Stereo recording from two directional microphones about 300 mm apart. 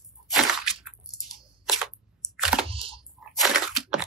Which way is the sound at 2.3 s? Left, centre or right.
Centre.